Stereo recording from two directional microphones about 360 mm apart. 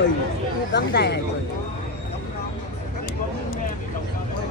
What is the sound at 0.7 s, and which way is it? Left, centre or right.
Speech, left.